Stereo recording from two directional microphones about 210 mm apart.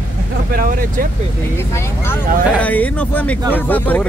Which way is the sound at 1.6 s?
10° left (ahead or behind).